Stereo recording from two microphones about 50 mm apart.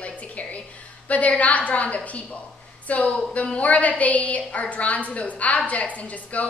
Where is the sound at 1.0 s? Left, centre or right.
Left.